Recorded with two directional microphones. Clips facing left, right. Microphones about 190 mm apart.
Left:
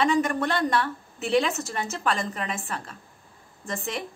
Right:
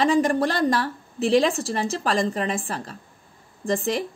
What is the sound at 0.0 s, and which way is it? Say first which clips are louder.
A woman's voice: right 4 dB; 35° right (ahead or behind).